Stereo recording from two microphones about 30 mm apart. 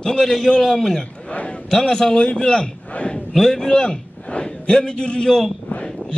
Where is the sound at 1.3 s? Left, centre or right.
Left.